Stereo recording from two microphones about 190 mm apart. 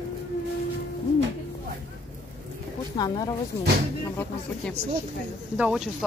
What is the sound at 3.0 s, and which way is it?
Speech, 20° left (ahead or behind).